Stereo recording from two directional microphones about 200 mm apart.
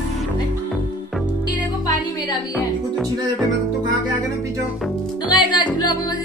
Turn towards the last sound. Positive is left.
turn(degrees=20)  # may be behind; listen again after turning